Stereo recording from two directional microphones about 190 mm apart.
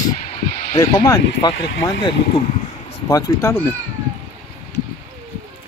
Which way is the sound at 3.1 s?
15° left (ahead or behind).